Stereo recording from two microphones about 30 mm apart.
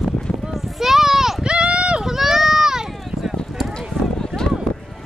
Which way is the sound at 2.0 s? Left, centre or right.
Centre.